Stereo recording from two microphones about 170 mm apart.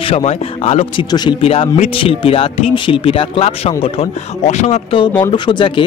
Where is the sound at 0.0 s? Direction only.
35° left (ahead or behind).